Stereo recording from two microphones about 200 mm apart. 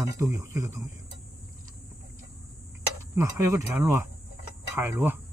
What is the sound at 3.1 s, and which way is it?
Speech, 15° right (ahead or behind).